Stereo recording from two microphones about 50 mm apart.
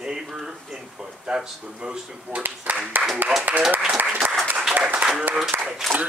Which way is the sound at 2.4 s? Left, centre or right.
Right.